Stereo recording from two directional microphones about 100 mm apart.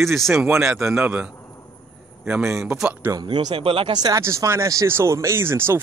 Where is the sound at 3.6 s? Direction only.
65° right (ahead or behind).